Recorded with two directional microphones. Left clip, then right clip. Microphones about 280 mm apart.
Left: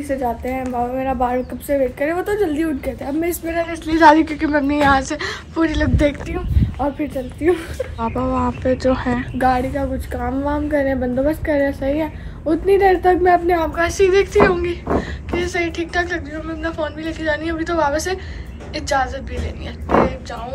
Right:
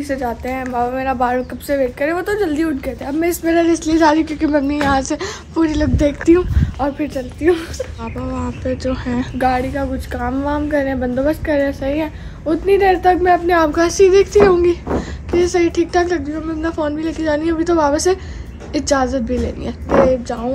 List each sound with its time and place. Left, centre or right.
0.1 s a woman's voice: centre; by 19.7 s right